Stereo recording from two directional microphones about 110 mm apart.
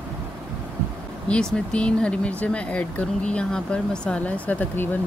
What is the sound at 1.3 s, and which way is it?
Speech, 5° left (ahead or behind).